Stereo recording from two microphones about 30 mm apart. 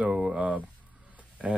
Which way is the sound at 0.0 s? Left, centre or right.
Right.